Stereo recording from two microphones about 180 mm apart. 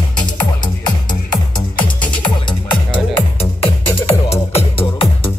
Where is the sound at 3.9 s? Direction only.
35° left (ahead or behind).